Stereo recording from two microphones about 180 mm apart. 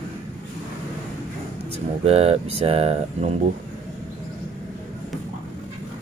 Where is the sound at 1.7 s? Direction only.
35° right (ahead or behind).